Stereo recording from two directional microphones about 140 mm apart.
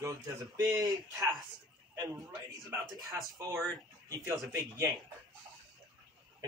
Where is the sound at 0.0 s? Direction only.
25° right (ahead or behind).